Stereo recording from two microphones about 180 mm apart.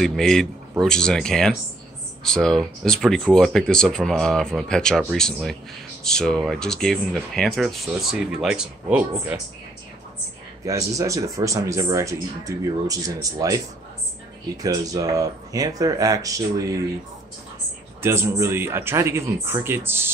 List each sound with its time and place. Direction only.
0.0 s speech: centre (ahead or behind)
10.6 s speech: 20° right (ahead or behind)
14.6 s speech: 20° right (ahead or behind)
18.0 s speech: 15° right (ahead or behind)